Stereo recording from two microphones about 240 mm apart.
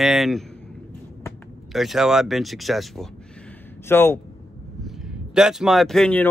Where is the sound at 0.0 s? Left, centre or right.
Centre.